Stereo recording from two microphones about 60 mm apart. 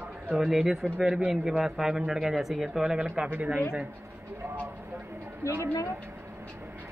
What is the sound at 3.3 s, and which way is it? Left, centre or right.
Speech, right.